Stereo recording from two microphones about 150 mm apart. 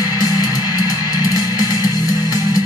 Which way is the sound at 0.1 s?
25° left (ahead or behind).